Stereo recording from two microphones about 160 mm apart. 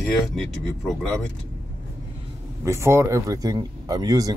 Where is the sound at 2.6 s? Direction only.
15° right (ahead or behind).